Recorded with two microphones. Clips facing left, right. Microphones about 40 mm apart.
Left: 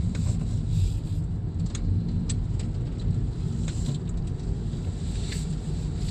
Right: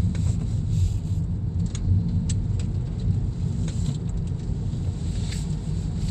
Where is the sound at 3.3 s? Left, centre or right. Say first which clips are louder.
Right 2 dB; centre.